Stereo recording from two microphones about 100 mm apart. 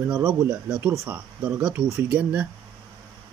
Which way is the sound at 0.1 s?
10° right (ahead or behind).